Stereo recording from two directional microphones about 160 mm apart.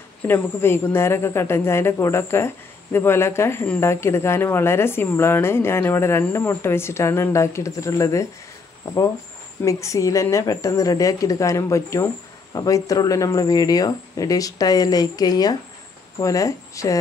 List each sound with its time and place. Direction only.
0.3 s speech: 15° left (ahead or behind)